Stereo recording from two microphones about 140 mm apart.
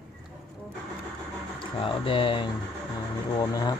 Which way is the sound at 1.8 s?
40° left (ahead or behind).